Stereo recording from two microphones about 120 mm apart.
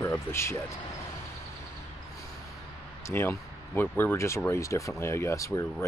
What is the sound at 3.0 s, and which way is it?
Speech, 20° left (ahead or behind).